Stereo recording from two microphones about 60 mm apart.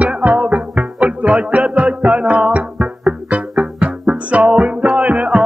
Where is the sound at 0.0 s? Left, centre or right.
Right.